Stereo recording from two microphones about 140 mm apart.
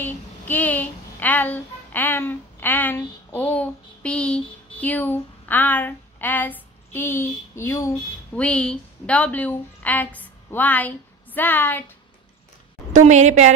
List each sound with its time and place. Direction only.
0.0 s speech: 10° left (ahead or behind)
8.4 s a woman's voice: 10° left (ahead or behind)
12.9 s a woman's voice: 55° right (ahead or behind)